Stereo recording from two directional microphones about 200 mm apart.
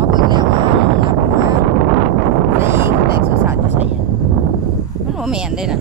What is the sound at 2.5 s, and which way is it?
Wind noise, 15° right (ahead or behind).